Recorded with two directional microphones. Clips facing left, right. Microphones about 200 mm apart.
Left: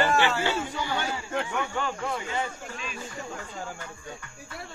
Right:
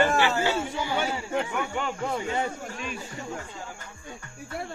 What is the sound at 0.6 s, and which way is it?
Speech, 10° right (ahead or behind).